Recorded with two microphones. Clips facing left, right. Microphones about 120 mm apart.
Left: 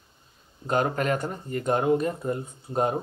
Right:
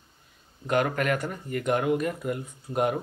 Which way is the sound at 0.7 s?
30° left (ahead or behind).